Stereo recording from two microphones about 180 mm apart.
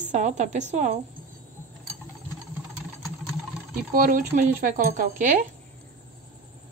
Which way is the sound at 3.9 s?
50° right (ahead or behind).